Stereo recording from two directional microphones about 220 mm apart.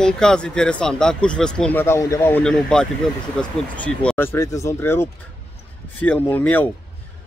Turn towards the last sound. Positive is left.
turn(degrees=10)  # may be behind; listen again after turning